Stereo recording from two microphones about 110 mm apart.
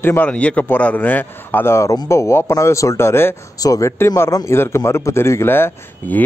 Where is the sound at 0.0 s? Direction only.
20° left (ahead or behind).